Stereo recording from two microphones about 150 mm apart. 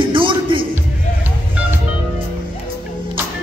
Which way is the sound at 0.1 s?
35° right (ahead or behind).